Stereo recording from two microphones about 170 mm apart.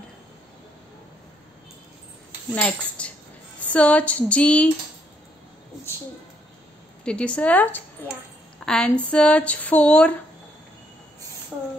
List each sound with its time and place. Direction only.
2.5 s speech: 5° left (ahead or behind)
7.1 s speech: 5° left (ahead or behind)